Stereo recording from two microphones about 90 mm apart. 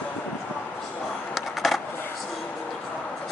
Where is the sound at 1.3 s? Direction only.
Centre (ahead or behind).